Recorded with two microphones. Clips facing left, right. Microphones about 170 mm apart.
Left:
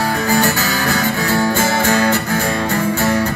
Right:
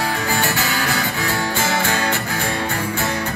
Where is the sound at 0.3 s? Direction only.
40° left (ahead or behind).